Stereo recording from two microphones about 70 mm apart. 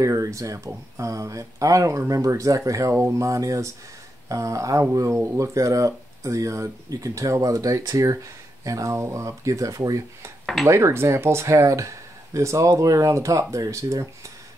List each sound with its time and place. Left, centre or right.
0.0 s speech: right
10.4 s speech: centre
10.7 s speech: right